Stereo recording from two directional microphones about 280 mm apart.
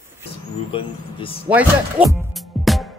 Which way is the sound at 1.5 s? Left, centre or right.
Centre.